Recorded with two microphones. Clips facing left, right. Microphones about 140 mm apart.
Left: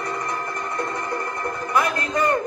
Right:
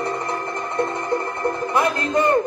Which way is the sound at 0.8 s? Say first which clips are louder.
Right 7 dB; 25° right (ahead or behind).